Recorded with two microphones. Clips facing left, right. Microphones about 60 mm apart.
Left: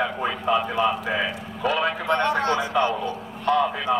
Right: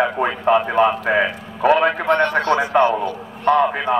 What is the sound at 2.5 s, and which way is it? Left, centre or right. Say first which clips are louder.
Speech: right 6 dB; right.